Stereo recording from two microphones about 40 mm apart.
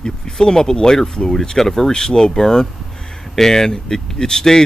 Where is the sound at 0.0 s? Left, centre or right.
Centre.